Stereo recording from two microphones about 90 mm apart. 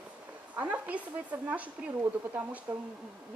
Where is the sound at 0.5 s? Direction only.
15° right (ahead or behind).